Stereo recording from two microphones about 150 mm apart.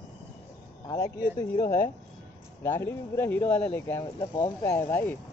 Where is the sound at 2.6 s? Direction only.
15° left (ahead or behind).